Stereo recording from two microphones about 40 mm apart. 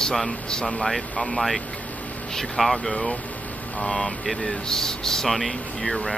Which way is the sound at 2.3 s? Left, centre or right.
Centre.